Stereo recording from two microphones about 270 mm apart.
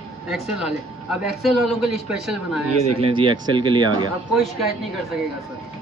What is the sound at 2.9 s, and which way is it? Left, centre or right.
Speech, centre.